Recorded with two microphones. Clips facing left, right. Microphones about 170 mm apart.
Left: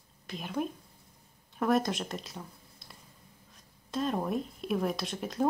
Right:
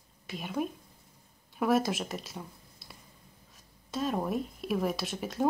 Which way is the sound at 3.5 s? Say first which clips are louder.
Left 1 dB; centre (ahead or behind).